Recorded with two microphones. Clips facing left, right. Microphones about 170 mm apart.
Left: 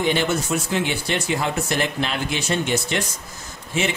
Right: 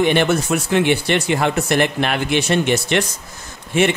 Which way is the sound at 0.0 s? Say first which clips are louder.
Right 5 dB; 65° right (ahead or behind).